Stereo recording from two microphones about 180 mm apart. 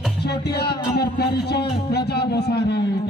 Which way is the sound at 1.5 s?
65° left (ahead or behind).